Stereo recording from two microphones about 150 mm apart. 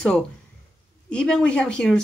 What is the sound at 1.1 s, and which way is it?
Speech, 5° left (ahead or behind).